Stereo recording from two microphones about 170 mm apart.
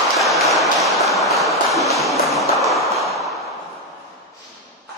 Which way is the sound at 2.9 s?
20° right (ahead or behind).